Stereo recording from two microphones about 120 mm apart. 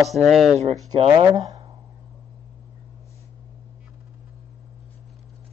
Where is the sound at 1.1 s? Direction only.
35° right (ahead or behind).